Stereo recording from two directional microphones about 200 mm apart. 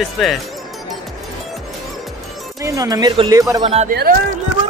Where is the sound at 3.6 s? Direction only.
30° right (ahead or behind).